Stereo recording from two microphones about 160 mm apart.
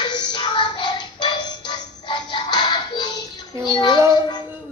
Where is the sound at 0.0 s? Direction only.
30° left (ahead or behind).